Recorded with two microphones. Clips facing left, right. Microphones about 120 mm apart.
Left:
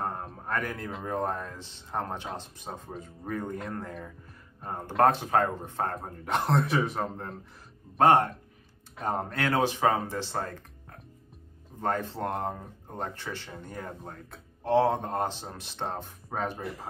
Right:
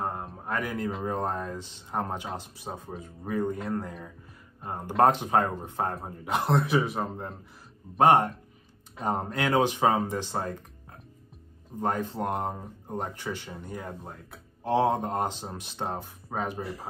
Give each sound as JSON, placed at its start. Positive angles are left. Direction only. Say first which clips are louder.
{"t": 0.0, "sound": "a sound", "louder": "right 1 dB", "side_deg": -5}
{"t": 1.0, "sound": "speech", "louder": "left 4 dB", "side_deg": -20}
{"t": 5.0, "sound": "speech", "louder": "right 1 dB", "side_deg": -20}
{"t": 5.9, "sound": "speech", "louder": "right 1 dB", "side_deg": -5}
{"t": 8.0, "sound": "speech", "louder": "right 1 dB", "side_deg": -15}
{"t": 11.8, "sound": "speech", "louder": "right 1 dB", "side_deg": -15}